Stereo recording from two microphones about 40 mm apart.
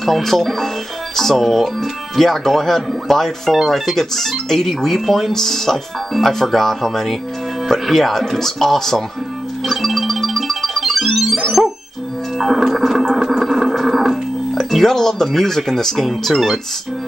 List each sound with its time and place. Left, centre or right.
0.0 s speech: centre
9.7 s music: centre
16.1 s speech: centre